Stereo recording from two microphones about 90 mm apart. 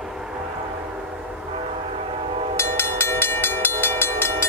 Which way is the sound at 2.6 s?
25° left (ahead or behind).